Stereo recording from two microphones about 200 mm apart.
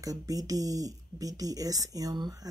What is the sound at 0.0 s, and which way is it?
Speech, 15° right (ahead or behind).